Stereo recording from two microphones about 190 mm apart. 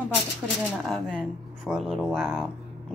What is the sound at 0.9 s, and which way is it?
A woman's voice, 5° left (ahead or behind).